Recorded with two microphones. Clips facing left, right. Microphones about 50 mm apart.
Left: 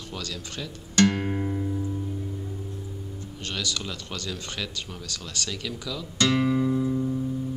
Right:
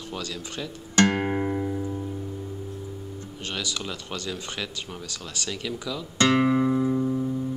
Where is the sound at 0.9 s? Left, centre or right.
Centre.